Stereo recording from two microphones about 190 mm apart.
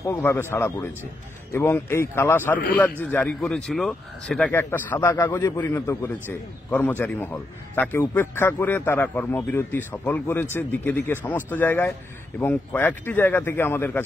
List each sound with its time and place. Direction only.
0.0 s a man's voice: 15° left (ahead or behind)